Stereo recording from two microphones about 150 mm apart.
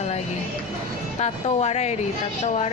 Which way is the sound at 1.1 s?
45° left (ahead or behind).